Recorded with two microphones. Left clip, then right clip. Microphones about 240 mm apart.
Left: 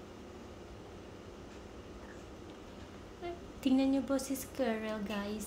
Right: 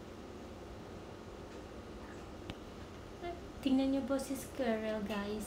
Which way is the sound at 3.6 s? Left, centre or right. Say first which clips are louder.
Left 2 dB; centre.